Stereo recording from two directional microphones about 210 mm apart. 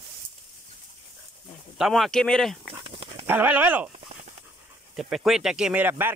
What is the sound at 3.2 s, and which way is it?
Speech, 10° right (ahead or behind).